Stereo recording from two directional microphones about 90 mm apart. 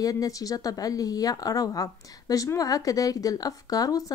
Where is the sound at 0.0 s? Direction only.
40° left (ahead or behind).